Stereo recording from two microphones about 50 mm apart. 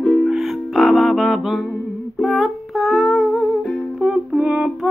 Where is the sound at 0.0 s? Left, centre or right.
Centre.